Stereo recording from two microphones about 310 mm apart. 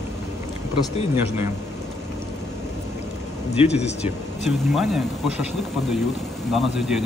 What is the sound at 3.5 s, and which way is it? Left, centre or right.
Speech, left.